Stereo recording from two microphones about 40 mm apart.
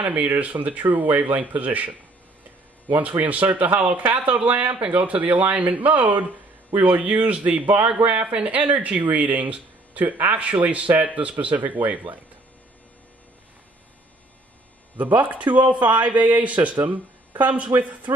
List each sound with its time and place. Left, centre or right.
0.0 s a man's voice: right
15.0 s a man's voice: right